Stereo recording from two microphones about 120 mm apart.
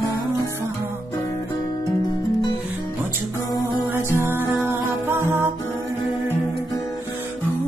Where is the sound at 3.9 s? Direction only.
20° right (ahead or behind).